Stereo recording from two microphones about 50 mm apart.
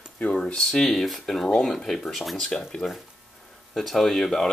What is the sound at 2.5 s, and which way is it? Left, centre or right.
Speech, centre.